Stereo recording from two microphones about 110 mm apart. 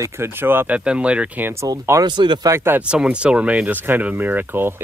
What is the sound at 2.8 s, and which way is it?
Speech, 10° right (ahead or behind).